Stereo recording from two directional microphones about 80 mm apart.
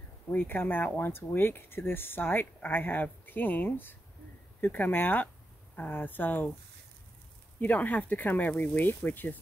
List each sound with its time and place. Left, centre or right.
0.3 s speech: left
7.6 s speech: centre